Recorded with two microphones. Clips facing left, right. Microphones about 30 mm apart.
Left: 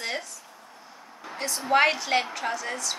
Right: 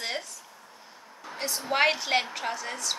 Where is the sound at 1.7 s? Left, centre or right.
Centre.